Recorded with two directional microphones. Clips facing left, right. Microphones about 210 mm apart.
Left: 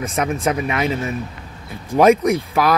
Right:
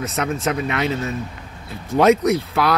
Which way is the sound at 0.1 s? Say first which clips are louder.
Left 4 dB; 10° left (ahead or behind).